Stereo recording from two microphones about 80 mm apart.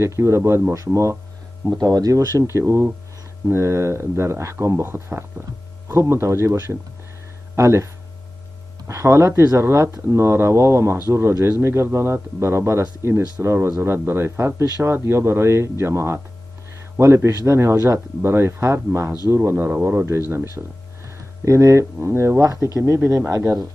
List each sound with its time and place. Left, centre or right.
0.0 s speech: right
1.8 s speech: right
19.5 s speech: right
20.1 s speech: right
21.5 s speech: right